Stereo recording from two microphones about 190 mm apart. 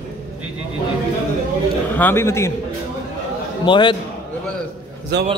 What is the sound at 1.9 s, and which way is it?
Speech, 10° left (ahead or behind).